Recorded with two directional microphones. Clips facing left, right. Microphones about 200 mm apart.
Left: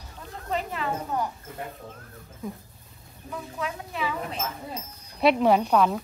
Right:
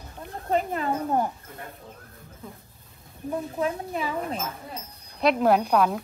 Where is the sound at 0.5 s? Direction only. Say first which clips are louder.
Right 4 dB; 40° right (ahead or behind).